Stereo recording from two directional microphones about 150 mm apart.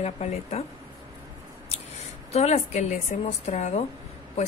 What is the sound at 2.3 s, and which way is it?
Speech, 45° left (ahead or behind).